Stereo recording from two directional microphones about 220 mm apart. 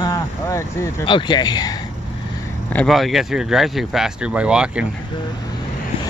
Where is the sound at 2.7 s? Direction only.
5° left (ahead or behind).